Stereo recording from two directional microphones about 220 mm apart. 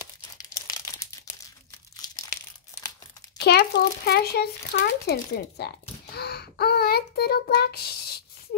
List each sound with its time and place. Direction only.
0.4 s crumpling: 15° left (ahead or behind)
2.7 s crumpling: 10° left (ahead or behind)
3.3 s speech: 50° left (ahead or behind)